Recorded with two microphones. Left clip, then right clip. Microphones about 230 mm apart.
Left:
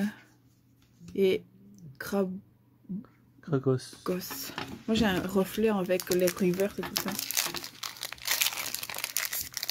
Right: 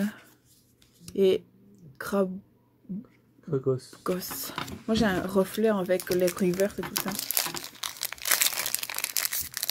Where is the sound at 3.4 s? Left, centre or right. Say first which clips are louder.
Right 1 dB; left.